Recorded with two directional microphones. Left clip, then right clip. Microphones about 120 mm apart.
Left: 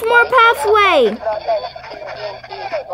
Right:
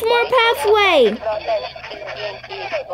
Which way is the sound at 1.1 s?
25° right (ahead or behind).